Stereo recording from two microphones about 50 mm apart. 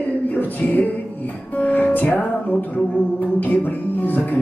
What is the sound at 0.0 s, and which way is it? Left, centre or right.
Music, left.